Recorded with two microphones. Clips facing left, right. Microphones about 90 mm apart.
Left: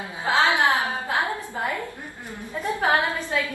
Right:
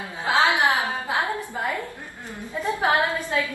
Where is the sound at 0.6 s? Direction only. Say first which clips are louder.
Even; 20° right (ahead or behind).